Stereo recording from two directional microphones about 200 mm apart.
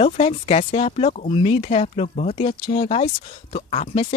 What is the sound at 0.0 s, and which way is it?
Speech, 30° left (ahead or behind).